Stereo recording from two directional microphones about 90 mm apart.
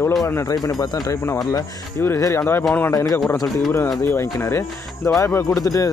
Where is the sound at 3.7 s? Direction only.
25° left (ahead or behind).